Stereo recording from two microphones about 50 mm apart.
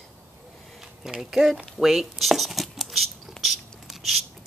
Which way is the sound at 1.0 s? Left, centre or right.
Centre.